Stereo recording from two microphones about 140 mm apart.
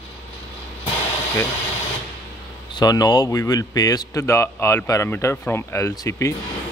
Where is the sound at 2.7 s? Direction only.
30° left (ahead or behind).